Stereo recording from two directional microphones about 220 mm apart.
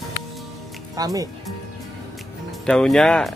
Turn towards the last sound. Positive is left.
turn(degrees=0)  # may be behind; listen again after turning